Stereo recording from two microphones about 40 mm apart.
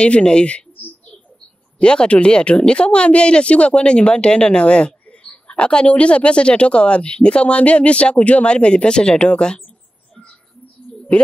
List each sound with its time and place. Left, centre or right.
0.0 s speech: left
1.8 s speech: left
5.0 s a sound: left
5.9 s speech: left
11.1 s a woman's voice: left